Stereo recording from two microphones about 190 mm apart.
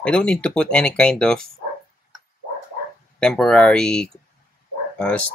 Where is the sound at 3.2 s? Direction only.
5° left (ahead or behind).